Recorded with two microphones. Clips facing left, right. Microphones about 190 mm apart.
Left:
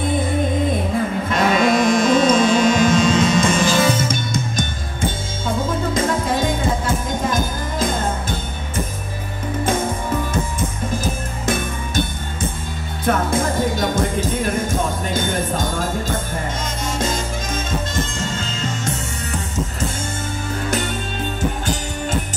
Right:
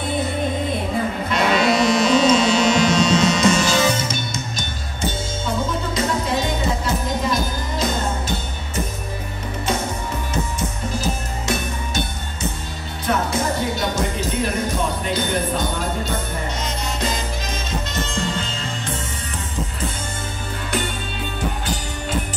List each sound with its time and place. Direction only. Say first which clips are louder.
1.3 s music: left 2 dB; 50° left (ahead or behind)
11.4 s music: left 3 dB; 50° left (ahead or behind)
18.3 s music: left 2 dB; 45° left (ahead or behind)